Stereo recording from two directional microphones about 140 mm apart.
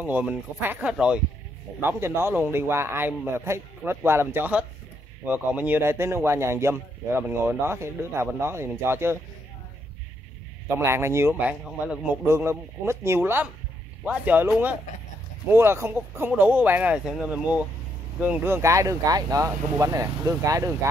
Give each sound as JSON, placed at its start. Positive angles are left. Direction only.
{"t": 0.0, "sound": "speech", "side_deg": -10}
{"t": 10.8, "sound": "speech", "side_deg": -20}